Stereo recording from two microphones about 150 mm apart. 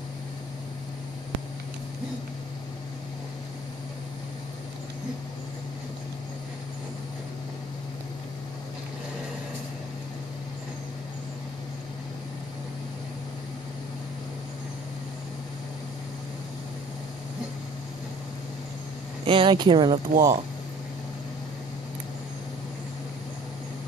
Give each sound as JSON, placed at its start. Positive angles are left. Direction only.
{"t": 19.2, "sound": "speech", "side_deg": -35}